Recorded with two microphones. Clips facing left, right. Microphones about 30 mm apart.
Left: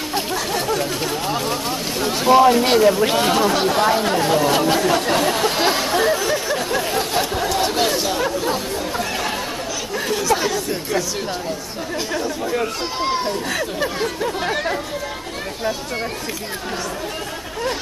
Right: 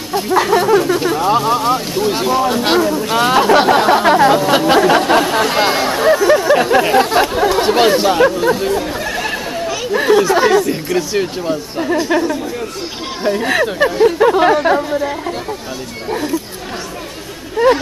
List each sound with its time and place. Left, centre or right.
0.3 s a sound: right
0.9 s speech: centre
2.2 s speech: centre
3.2 s speech: right
4.5 s speech: right
6.6 s speech: right
7.3 s speech: right
9.9 s speech: right